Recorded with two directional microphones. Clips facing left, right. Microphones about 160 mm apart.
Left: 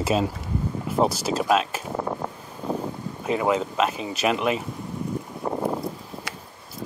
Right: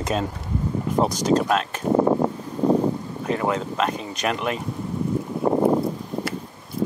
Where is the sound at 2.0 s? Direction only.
35° right (ahead or behind).